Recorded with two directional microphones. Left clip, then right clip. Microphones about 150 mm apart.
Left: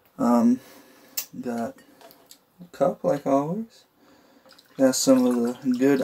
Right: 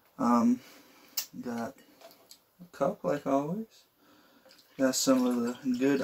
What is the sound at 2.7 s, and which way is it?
Speech, 5° left (ahead or behind).